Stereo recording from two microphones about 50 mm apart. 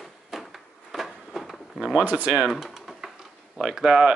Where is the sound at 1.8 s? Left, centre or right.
Centre.